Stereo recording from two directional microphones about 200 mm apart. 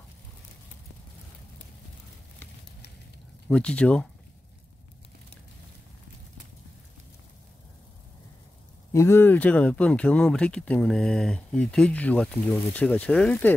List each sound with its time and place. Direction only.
3.4 s speech: 5° left (ahead or behind)
8.9 s speech: 15° left (ahead or behind)